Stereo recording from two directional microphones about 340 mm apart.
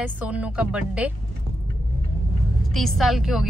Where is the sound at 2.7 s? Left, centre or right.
Centre.